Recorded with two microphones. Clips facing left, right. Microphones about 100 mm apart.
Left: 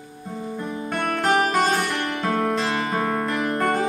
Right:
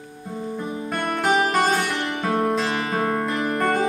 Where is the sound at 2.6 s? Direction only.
Centre (ahead or behind).